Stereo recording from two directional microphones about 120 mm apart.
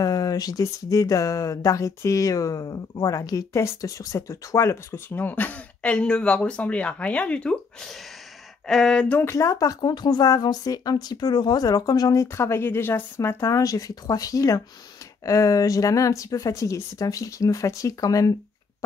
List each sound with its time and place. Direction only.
0.0 s speech: 30° left (ahead or behind); by 7.9 s 10° left (ahead or behind)
8.6 s a sound: 5° left (ahead or behind)
9.1 s speech: 20° left (ahead or behind)